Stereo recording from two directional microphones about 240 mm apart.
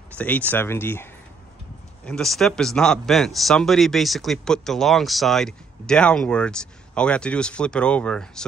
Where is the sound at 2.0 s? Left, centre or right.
Centre.